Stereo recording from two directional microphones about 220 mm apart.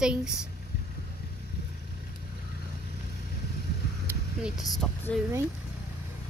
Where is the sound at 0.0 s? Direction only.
5° right (ahead or behind).